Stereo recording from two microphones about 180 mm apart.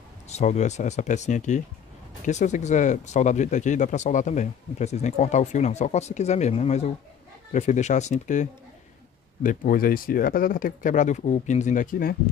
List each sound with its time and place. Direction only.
0.3 s speech: 40° left (ahead or behind)